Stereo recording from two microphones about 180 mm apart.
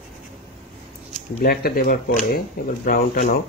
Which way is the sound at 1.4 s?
55° left (ahead or behind).